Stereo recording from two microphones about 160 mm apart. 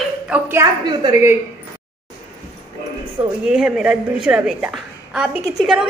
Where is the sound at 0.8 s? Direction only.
25° right (ahead or behind).